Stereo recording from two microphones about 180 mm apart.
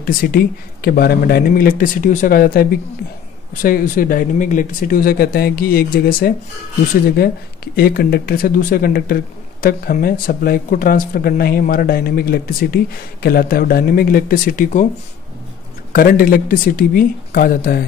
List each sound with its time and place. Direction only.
0.0 s speech: 55° left (ahead or behind)
15.9 s speech: 55° left (ahead or behind)